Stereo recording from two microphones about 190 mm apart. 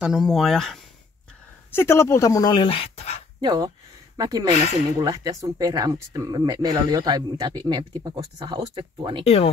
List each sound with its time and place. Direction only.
0.0 s speech: centre (ahead or behind)
1.7 s speech: 15° left (ahead or behind); by 3.3 s 35° left (ahead or behind)
3.3 s speech: 20° right (ahead or behind)
4.5 s speech: 35° left (ahead or behind)
5.0 s speech: 20° right (ahead or behind)
9.2 s speech: 30° left (ahead or behind)